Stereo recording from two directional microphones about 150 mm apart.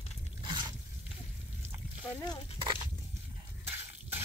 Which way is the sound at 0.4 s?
30° right (ahead or behind).